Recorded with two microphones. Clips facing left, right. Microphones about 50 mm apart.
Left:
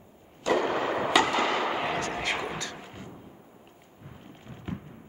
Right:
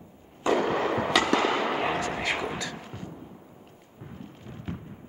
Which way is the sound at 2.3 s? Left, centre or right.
Centre.